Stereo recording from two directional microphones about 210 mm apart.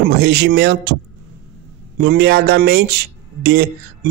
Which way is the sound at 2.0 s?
50° right (ahead or behind).